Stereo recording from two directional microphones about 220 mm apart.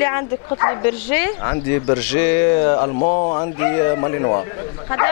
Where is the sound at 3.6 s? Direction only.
15° left (ahead or behind).